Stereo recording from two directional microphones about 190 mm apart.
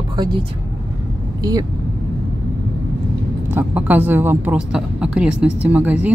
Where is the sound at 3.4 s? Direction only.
10° right (ahead or behind).